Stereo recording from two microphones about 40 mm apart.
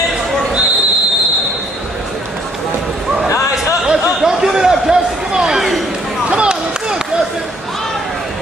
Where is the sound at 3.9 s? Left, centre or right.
Centre.